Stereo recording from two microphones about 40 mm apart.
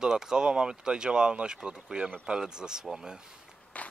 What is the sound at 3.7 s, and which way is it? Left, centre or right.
Crackle, left.